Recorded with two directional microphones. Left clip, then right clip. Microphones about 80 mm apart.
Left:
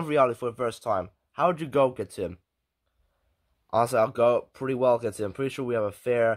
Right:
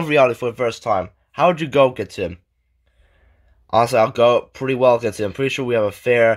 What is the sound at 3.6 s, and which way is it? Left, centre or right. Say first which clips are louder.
Speech: right 8 dB; centre.